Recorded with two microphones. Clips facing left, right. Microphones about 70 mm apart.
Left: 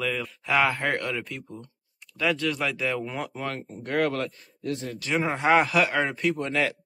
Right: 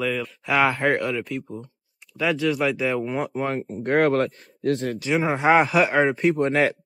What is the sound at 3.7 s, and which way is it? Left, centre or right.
Speech, right.